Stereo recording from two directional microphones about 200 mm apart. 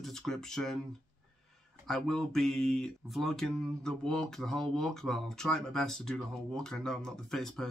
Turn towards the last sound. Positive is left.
turn(degrees=0)  # may be behind; listen again after turning